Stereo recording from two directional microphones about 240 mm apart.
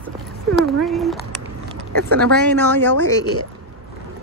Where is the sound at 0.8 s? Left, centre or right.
Centre.